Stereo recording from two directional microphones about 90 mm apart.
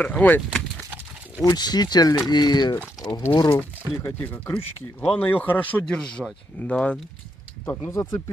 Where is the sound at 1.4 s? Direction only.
50° left (ahead or behind).